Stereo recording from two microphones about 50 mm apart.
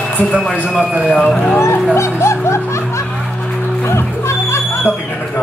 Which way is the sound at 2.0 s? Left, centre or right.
Left.